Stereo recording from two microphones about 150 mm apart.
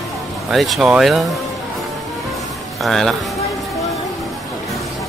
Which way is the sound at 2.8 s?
Centre (ahead or behind).